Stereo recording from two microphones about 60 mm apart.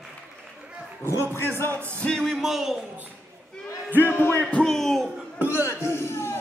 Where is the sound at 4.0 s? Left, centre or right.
Left.